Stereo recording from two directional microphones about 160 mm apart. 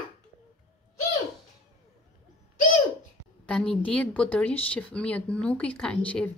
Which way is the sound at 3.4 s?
5° left (ahead or behind).